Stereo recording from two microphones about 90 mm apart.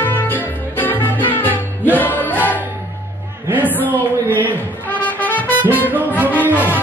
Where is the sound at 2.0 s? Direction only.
20° left (ahead or behind).